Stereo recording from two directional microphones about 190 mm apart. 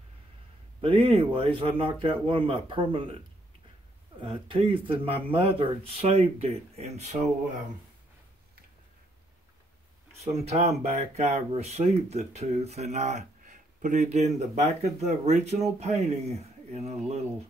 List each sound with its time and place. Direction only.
0.7 s speech: 30° right (ahead or behind)
4.2 s speech: 30° right (ahead or behind)
10.2 s speech: 35° right (ahead or behind)